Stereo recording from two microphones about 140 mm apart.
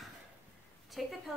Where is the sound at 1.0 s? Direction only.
Centre (ahead or behind).